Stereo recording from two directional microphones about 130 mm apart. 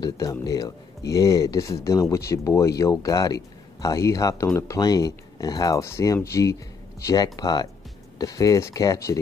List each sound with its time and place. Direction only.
0.0 s speech: 30° left (ahead or behind)